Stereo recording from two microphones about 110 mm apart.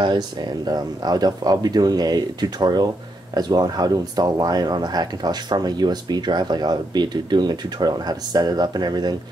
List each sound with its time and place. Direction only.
0.0 s speech: 45° right (ahead or behind)